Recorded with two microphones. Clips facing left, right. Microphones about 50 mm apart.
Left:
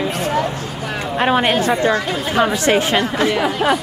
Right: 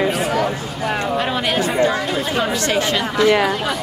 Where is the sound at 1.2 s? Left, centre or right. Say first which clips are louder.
Left 5 dB; left.